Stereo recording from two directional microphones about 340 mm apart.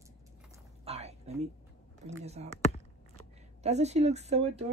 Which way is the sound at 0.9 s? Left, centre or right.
Centre.